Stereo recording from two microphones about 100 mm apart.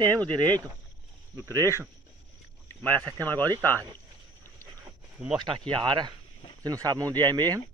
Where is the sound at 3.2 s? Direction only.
20° left (ahead or behind).